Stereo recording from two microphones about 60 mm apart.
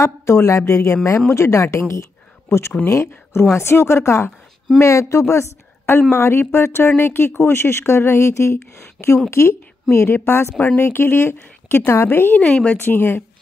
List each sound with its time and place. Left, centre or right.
0.0 s speech: left
2.9 s speech: left
9.8 s a woman's voice: left; by 12.7 s centre
12.8 s speech: left